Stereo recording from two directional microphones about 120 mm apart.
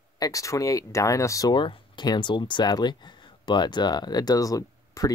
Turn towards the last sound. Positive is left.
turn(degrees=30)  # may be behind; listen again after turning